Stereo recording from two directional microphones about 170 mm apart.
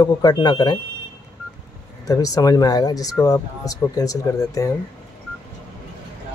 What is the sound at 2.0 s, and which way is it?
Speech, 20° left (ahead or behind).